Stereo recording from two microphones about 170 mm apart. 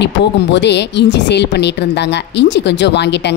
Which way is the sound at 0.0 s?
90° left.